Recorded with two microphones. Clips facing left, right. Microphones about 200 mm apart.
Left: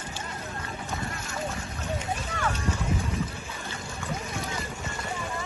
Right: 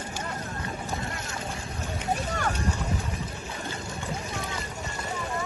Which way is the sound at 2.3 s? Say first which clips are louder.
Right 1 dB; 40° right (ahead or behind).